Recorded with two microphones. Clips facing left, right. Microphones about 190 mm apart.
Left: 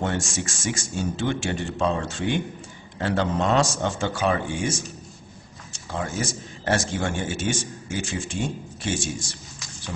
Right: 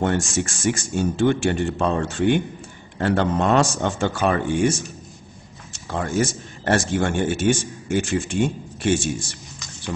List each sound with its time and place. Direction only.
0.0 s speech: 55° right (ahead or behind)
5.9 s speech: 60° right (ahead or behind)